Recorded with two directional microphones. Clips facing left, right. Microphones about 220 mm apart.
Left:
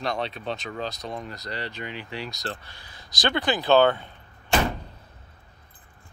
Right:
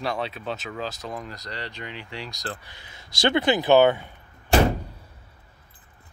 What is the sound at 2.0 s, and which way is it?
Speech, 55° left (ahead or behind).